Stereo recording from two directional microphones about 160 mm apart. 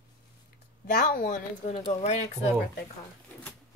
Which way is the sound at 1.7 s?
40° left (ahead or behind).